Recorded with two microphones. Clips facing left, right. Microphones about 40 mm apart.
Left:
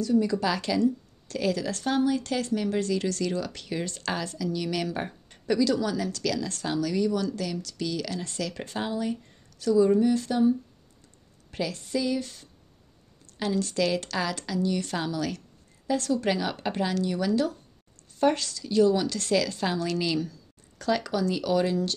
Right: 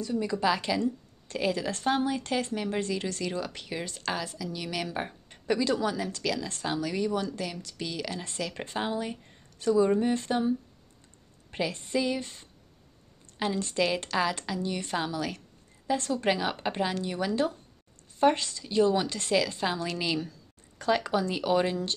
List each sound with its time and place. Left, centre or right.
0.0 s speech: centre
5.6 s a woman's voice: right
9.6 s a woman's voice: right
11.5 s a woman's voice: right